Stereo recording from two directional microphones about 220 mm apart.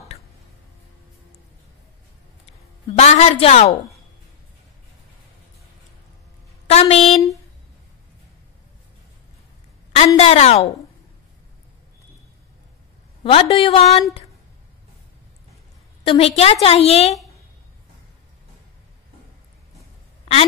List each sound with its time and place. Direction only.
3.0 s a woman's voice: 30° left (ahead or behind)
6.7 s a sound: 30° left (ahead or behind)
9.9 s a woman's voice: 30° left (ahead or behind)
13.2 s a woman's voice: 25° left (ahead or behind)
16.1 s a woman's voice: 25° left (ahead or behind)